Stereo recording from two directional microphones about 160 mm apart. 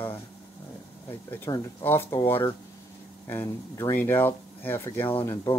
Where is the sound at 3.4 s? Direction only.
15° left (ahead or behind).